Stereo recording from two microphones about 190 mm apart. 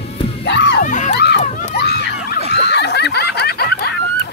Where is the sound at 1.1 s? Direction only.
60° left (ahead or behind).